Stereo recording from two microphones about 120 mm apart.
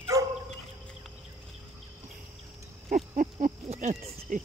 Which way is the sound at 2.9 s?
90° right.